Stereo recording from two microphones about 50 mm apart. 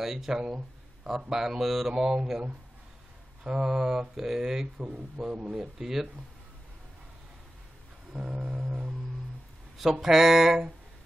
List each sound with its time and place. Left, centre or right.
0.0 s speech: centre
3.4 s speech: centre
4.8 s a man's voice: right
5.2 s speech: centre
8.1 s a sound: centre
9.8 s speech: centre